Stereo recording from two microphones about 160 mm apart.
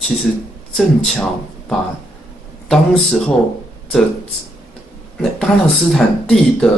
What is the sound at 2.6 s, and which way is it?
Speech, 5° left (ahead or behind).